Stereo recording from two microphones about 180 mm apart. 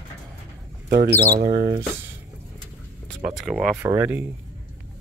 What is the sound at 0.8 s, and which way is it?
Speech, 50° right (ahead or behind).